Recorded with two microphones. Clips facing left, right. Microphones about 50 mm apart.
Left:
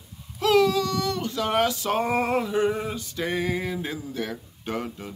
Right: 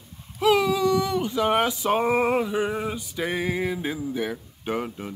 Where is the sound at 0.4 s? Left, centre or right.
Centre.